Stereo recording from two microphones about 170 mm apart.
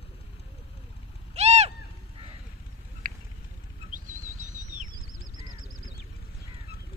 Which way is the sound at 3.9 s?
50° right (ahead or behind).